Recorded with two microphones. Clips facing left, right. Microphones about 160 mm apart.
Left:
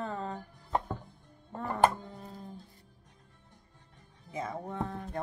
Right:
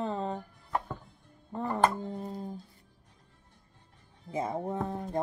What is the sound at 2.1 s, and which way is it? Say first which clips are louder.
Speech: right 8 dB; 40° right (ahead or behind).